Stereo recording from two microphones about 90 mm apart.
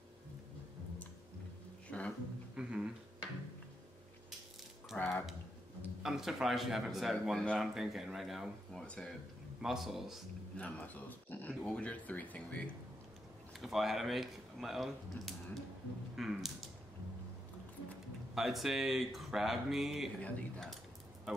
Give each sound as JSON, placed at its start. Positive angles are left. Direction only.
{"t": 1.9, "sound": "speech", "side_deg": 15}
{"t": 2.5, "sound": "speech", "side_deg": -10}
{"t": 4.9, "sound": "speech", "side_deg": 25}
{"t": 6.0, "sound": "speech", "side_deg": -5}
{"t": 8.8, "sound": "speech", "side_deg": 15}
{"t": 9.6, "sound": "speech", "side_deg": -5}
{"t": 10.6, "sound": "speech", "side_deg": 15}
{"t": 13.6, "sound": "speech", "side_deg": 0}
{"t": 18.3, "sound": "speech", "side_deg": 0}
{"t": 20.2, "sound": "speech", "side_deg": 15}
{"t": 21.3, "sound": "a sound", "side_deg": -5}